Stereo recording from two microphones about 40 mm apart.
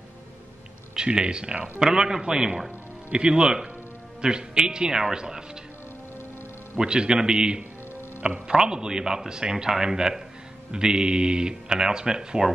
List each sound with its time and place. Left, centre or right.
0.9 s a man's voice: right
6.8 s a man's voice: centre